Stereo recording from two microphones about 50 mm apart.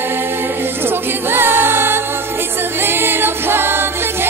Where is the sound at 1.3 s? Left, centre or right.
Right.